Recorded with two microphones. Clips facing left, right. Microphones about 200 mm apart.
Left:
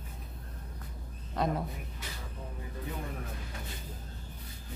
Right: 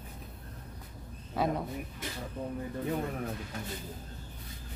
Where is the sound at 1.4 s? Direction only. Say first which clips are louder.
Right 1 dB; 5° right (ahead or behind).